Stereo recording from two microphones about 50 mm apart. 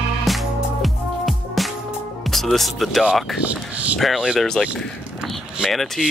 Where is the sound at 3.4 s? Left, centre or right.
Right.